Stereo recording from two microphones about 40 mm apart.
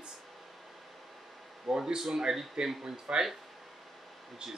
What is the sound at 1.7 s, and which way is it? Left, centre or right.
Speech, right.